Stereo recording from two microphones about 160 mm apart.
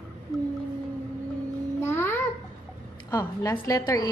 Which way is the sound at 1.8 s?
15° left (ahead or behind).